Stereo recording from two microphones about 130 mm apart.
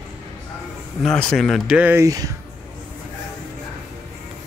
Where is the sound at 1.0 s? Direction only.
5° left (ahead or behind).